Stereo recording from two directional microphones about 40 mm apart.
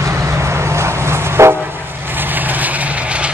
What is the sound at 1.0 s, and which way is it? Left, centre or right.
Train, right.